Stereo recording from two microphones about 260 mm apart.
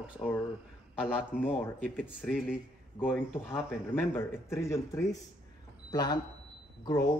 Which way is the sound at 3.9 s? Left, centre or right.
Centre.